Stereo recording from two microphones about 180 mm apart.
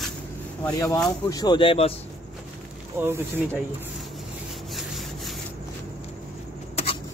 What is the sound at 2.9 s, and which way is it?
Speech, 15° right (ahead or behind).